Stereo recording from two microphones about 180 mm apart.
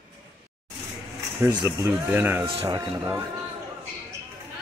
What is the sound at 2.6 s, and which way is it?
Speech, 20° right (ahead or behind).